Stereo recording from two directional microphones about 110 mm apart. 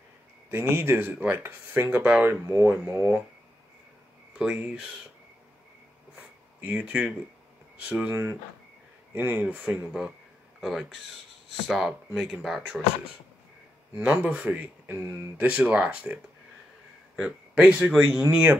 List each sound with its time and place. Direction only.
0.5 s speech: 20° right (ahead or behind)
4.4 s speech: 10° right (ahead or behind)
6.1 s a sound: 15° right (ahead or behind)
7.9 s speech: 10° right (ahead or behind)
13.9 s speech: 15° right (ahead or behind)
15.0 s speech: 30° right (ahead or behind)
15.3 s speech: 15° right (ahead or behind)